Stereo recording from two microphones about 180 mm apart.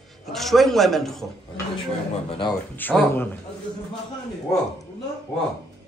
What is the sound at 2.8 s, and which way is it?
Speech, 10° left (ahead or behind).